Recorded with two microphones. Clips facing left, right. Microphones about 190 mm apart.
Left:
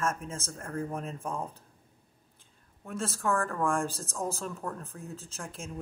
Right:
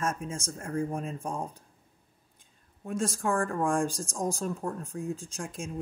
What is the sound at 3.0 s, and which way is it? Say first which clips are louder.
Speech: right 2 dB; 15° right (ahead or behind).